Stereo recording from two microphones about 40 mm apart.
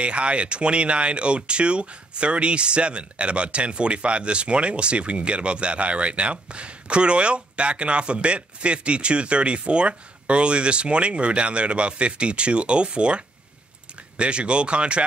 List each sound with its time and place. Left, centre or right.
0.0 s speech: right